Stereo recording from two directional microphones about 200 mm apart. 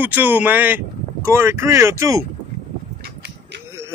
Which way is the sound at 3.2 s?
60° right (ahead or behind).